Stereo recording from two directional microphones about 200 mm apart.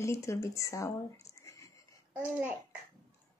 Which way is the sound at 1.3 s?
15° left (ahead or behind).